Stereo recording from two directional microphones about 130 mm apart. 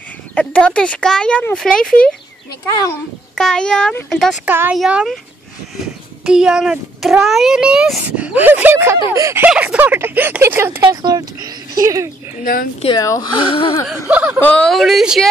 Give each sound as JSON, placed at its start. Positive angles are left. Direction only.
{"t": 0.3, "sound": "speech", "side_deg": 10}
{"t": 2.6, "sound": "speech", "side_deg": 25}
{"t": 3.3, "sound": "a woman's voice", "side_deg": 5}
{"t": 4.5, "sound": "a child's voice", "side_deg": -15}
{"t": 4.7, "sound": "a woman's voice", "side_deg": -5}
{"t": 6.2, "sound": "a child's voice", "side_deg": -5}
{"t": 9.4, "sound": "a child's voice", "side_deg": -10}
{"t": 11.0, "sound": "speech", "side_deg": -30}
{"t": 13.0, "sound": "speech", "side_deg": 25}
{"t": 13.8, "sound": "a child's voice", "side_deg": -10}
{"t": 14.4, "sound": "a woman's voice", "side_deg": 5}